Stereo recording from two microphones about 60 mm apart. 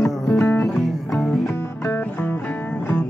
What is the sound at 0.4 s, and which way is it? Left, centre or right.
Music, left.